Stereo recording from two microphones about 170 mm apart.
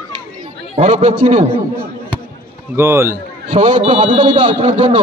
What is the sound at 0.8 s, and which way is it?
Speech, 40° right (ahead or behind).